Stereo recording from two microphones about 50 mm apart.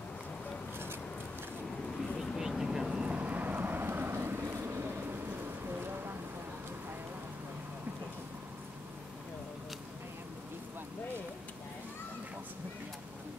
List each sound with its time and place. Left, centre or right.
2.1 s vehicle: centre
3.2 s vehicle: right